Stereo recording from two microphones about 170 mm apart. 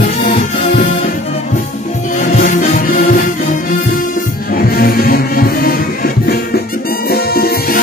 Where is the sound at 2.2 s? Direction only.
55° left (ahead or behind).